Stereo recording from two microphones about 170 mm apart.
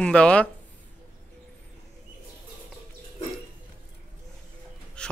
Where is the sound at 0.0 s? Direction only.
5° left (ahead or behind).